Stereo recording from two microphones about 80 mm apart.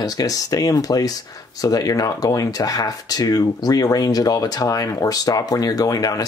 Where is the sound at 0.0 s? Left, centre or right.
Left.